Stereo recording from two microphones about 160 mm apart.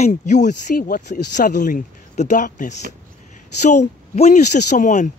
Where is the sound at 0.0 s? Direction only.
45° left (ahead or behind).